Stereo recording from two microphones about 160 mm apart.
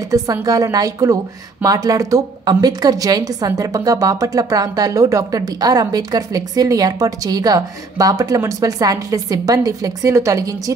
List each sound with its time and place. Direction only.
0.1 s a woman's voice: 20° right (ahead or behind)